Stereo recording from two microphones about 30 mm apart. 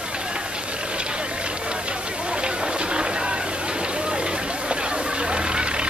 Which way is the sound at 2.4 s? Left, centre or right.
Right.